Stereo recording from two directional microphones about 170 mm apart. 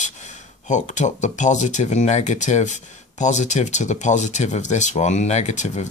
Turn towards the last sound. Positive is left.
turn(degrees=45)  # may be behind; listen again after turning